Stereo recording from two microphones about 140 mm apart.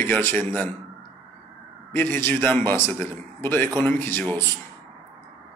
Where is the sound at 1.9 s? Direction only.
15° left (ahead or behind).